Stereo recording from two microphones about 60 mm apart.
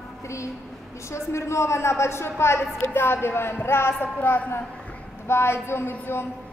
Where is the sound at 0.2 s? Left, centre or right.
Left.